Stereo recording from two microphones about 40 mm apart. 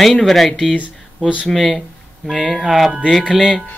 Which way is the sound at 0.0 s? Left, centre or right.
Centre.